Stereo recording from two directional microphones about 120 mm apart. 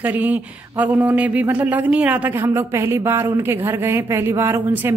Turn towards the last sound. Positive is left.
turn(degrees=-20)  # may be behind; listen again after turning